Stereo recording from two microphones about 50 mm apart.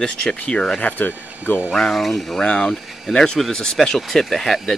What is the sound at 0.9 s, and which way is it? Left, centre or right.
Speech, left.